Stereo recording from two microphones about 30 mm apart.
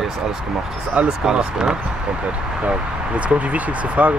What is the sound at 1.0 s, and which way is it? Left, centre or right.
Speech, right.